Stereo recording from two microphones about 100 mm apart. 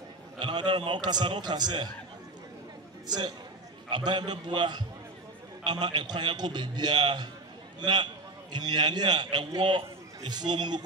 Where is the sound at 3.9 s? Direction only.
50° right (ahead or behind).